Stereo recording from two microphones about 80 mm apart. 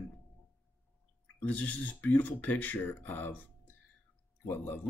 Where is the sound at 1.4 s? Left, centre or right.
Centre.